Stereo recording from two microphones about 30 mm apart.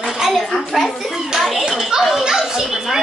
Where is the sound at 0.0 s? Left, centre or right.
Centre.